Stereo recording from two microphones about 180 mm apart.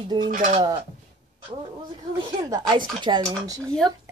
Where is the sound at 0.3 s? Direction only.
45° right (ahead or behind).